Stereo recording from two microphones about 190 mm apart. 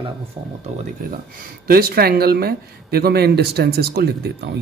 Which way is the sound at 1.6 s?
50° right (ahead or behind).